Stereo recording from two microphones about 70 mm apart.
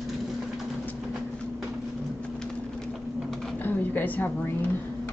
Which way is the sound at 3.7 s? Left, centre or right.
Left.